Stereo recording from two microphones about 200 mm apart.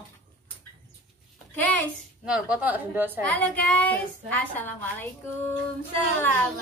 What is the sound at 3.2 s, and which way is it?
A woman's voice, 5° left (ahead or behind).